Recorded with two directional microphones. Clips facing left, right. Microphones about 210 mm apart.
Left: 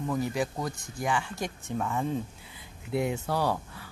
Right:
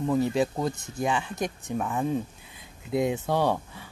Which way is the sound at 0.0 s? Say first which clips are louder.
Right 5 dB; 25° right (ahead or behind).